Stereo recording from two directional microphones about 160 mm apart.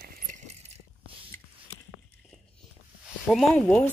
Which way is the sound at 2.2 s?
Centre (ahead or behind).